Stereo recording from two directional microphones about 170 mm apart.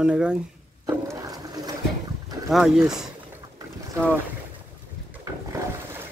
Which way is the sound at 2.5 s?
5° right (ahead or behind).